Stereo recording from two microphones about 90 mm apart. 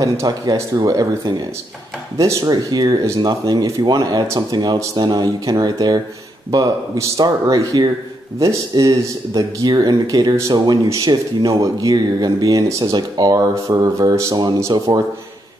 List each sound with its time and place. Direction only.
0.0 s speech: 40° right (ahead or behind)
2.4 s speech: 45° right (ahead or behind)